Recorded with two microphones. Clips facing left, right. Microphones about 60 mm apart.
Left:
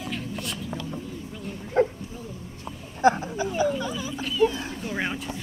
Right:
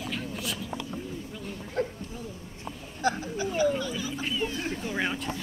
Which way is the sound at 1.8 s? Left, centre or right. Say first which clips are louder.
Left 8 dB; left.